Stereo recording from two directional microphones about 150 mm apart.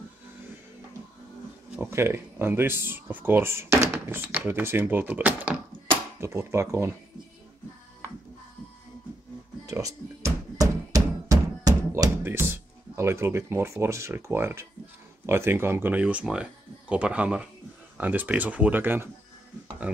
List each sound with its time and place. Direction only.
1.8 s speech: 15° right (ahead or behind)
9.7 s thunk: 20° right (ahead or behind)
12.2 s speech: 15° right (ahead or behind)